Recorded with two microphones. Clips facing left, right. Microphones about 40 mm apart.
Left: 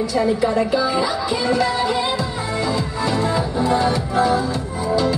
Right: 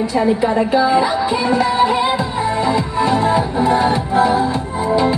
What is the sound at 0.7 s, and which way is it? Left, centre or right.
Music, right.